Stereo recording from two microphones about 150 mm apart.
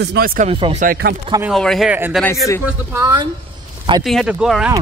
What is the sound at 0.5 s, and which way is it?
Speech, 35° right (ahead or behind).